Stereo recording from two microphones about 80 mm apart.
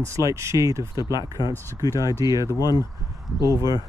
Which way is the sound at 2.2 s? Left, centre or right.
Right.